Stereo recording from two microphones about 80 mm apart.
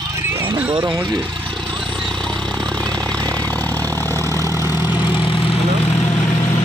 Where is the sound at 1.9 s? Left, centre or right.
Centre; by 4.4 s left.